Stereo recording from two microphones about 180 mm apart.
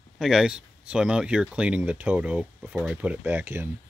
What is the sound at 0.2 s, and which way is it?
Speech, 5° right (ahead or behind).